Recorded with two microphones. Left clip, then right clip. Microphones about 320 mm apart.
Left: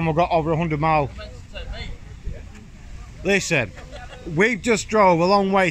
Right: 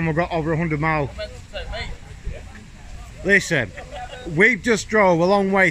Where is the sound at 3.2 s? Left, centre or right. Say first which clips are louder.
Right 2 dB; centre.